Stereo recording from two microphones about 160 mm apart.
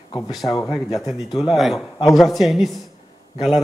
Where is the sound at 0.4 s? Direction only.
30° left (ahead or behind).